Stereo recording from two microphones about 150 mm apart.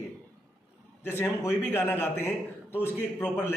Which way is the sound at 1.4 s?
15° left (ahead or behind).